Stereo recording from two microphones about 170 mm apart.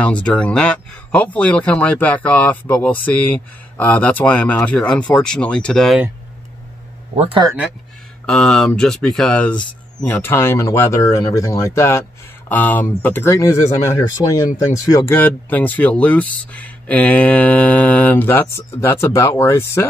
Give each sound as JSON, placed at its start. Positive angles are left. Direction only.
{"t": 0.0, "sound": "speech", "side_deg": 5}
{"t": 7.2, "sound": "speech", "side_deg": -35}
{"t": 8.3, "sound": "speech", "side_deg": 5}